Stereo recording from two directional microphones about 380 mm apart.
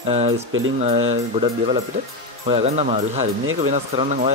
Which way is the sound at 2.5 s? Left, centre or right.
Centre.